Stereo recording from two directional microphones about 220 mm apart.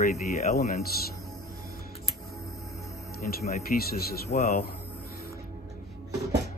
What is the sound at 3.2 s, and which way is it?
Speech, 45° left (ahead or behind).